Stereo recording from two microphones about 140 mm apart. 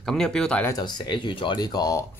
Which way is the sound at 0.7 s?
30° left (ahead or behind).